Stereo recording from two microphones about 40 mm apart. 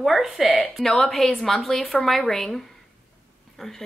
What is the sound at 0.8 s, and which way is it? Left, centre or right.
A woman's voice, centre.